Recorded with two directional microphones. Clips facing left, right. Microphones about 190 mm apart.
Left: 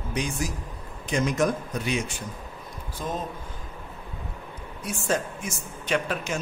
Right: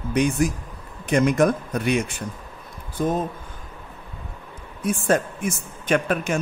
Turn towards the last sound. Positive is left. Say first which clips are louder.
# right 5 dB
turn(degrees=-55)  # may be behind; listen again after turning